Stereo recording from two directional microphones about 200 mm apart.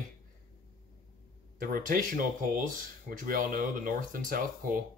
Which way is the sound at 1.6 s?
45° right (ahead or behind).